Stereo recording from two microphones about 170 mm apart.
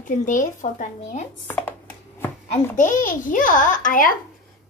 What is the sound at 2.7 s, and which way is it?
A woman's voice, 50° left (ahead or behind).